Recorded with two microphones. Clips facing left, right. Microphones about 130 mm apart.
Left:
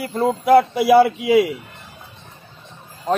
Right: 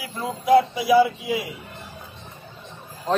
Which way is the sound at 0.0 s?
55° left (ahead or behind).